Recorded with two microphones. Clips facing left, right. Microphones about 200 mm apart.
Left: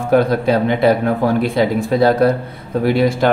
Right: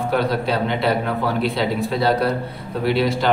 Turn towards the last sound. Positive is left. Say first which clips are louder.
# left 5 dB
turn(degrees=50)  # may be behind; listen again after turning